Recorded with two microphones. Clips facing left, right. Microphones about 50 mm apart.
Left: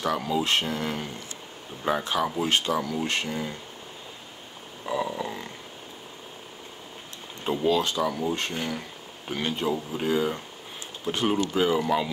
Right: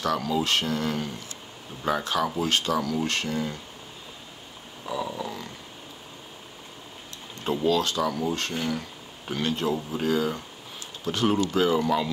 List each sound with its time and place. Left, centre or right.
0.0 s speech: centre
5.0 s speech: centre
7.4 s speech: centre
11.5 s speech: centre